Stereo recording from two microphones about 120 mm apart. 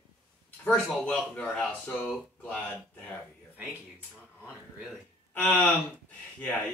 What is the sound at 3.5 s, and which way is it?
Speech, 10° right (ahead or behind).